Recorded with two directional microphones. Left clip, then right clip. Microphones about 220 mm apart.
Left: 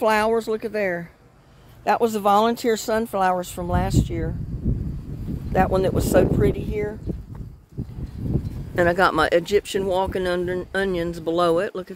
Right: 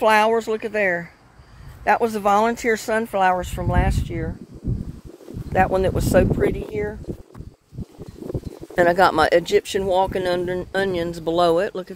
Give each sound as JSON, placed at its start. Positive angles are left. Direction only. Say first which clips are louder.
{"t": 0.0, "sound": "speech", "louder": "right 3 dB", "side_deg": 10}
{"t": 1.9, "sound": "speech", "louder": "right 1 dB", "side_deg": 20}
{"t": 5.5, "sound": "speech", "louder": "right 1 dB", "side_deg": 15}
{"t": 8.7, "sound": "speech", "louder": "right 3 dB", "side_deg": 0}